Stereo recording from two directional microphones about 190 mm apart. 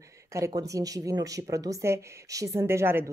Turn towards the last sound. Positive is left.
turn(degrees=-15)  # may be behind; listen again after turning